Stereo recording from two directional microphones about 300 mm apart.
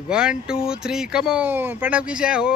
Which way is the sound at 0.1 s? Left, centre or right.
Centre.